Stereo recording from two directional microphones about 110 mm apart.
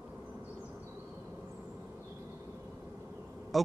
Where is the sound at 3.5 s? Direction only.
Centre (ahead or behind).